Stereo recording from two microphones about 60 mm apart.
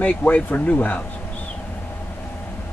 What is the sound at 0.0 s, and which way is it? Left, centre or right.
Speech, left.